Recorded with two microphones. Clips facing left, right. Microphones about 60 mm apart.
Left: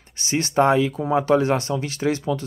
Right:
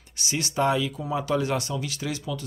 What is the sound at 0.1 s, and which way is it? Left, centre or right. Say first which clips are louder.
Speech: left 7 dB; left.